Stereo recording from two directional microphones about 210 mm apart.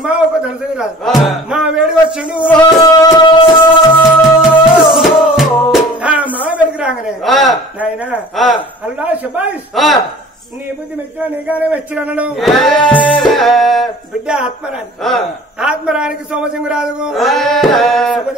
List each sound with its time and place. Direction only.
0.0 s speech: 5° right (ahead or behind)
2.8 s music: 20° left (ahead or behind)
4.4 s music: centre (ahead or behind)
5.9 s a sound: 5° right (ahead or behind)
7.8 s a man's voice: 5° right (ahead or behind)
11.4 s a man's voice: 5° right (ahead or behind)